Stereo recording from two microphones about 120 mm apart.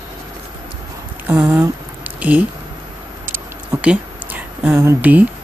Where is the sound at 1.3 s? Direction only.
10° right (ahead or behind).